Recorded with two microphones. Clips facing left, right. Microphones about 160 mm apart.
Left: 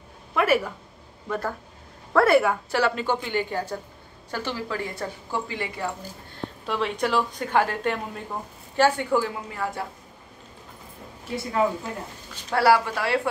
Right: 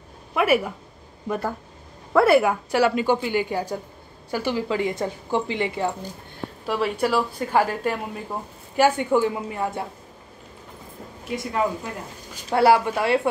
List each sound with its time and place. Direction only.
0.3 s a sound: 10° right (ahead or behind)
2.1 s speech: 10° right (ahead or behind)
6.6 s speech: 5° right (ahead or behind); by 9.8 s 20° right (ahead or behind)
11.2 s speech: 10° right (ahead or behind)